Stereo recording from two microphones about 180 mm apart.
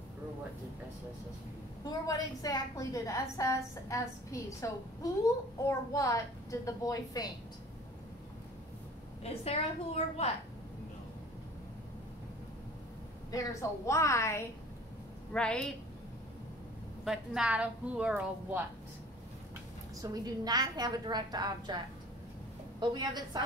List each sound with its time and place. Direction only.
1.9 s a woman's voice: 20° left (ahead or behind)
9.2 s a woman's voice: 35° left (ahead or behind)
13.3 s a woman's voice: 20° left (ahead or behind)
15.3 s a woman's voice: 5° left (ahead or behind)
17.0 s a woman's voice: 5° right (ahead or behind)
20.0 s a woman's voice: 20° right (ahead or behind)
22.8 s a woman's voice: 25° right (ahead or behind)